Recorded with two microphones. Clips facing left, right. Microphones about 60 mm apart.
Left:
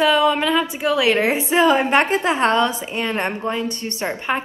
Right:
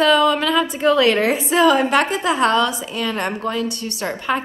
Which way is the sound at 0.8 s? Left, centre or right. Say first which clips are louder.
Right 4 dB; centre.